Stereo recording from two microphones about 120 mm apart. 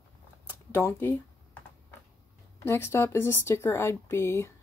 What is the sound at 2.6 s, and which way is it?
Speech, 20° left (ahead or behind).